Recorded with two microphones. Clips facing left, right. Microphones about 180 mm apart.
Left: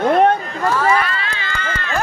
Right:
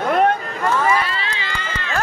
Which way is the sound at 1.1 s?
25° right (ahead or behind).